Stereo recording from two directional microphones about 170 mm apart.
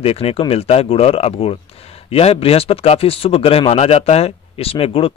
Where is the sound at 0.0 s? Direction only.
35° left (ahead or behind).